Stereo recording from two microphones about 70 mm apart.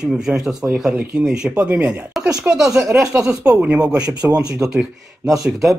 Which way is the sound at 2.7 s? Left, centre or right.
Right.